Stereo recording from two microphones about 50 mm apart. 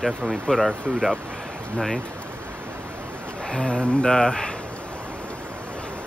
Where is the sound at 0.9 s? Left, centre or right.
Right.